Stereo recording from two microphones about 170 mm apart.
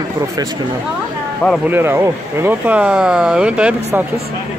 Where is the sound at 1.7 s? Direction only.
15° right (ahead or behind).